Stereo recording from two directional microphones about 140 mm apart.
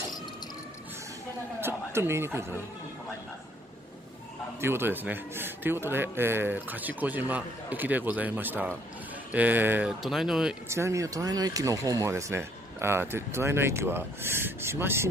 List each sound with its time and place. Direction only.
1.6 s a man's voice: 15° right (ahead or behind)
4.6 s speech: 15° right (ahead or behind)
10.0 s speech: centre (ahead or behind)
10.7 s speech: 20° right (ahead or behind)